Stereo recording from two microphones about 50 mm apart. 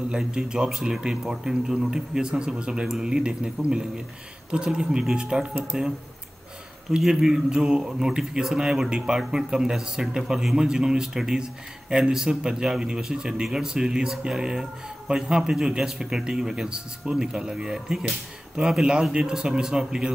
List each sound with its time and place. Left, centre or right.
0.1 s a man's voice: centre
7.0 s a man's voice: centre